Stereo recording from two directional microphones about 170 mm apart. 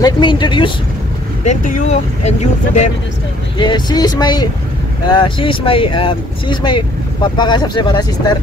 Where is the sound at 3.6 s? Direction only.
25° left (ahead or behind).